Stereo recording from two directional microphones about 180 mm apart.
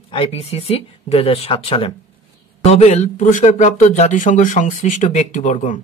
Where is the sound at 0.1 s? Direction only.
30° left (ahead or behind).